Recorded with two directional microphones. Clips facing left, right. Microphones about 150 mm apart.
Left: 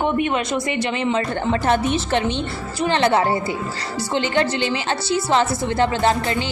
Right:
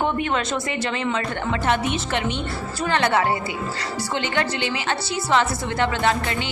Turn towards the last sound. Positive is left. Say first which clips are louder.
# left 3 dB
turn(degrees=35)  # may be behind; listen again after turning